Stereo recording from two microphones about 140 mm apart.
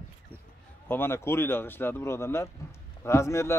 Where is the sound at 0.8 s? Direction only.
15° left (ahead or behind).